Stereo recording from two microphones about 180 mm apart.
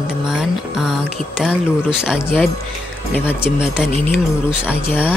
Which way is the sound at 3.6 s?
5° right (ahead or behind).